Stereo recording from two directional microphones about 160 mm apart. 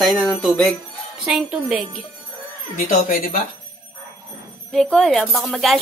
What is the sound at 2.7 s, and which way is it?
Speech, 65° left (ahead or behind).